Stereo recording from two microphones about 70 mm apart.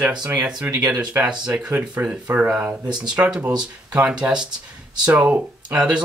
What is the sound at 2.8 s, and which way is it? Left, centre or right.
Speech, right.